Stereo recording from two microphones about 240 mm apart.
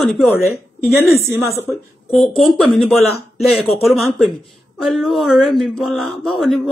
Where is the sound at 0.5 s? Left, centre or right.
Centre.